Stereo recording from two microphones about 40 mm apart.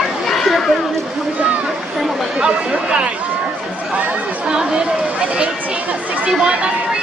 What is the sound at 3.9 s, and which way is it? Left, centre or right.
Chatter, right.